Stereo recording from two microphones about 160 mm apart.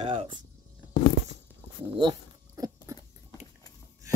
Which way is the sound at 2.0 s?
25° right (ahead or behind).